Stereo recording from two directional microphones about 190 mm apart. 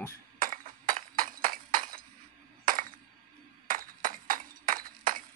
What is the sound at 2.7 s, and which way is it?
Coin, 45° right (ahead or behind).